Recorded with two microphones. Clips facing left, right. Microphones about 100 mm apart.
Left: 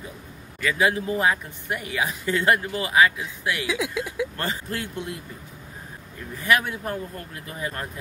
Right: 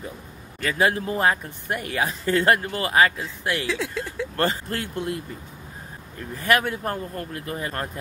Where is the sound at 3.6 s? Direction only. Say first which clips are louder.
Left 1 dB; 10° left (ahead or behind).